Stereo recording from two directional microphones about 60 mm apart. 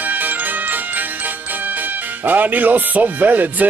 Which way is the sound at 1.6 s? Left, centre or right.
Right.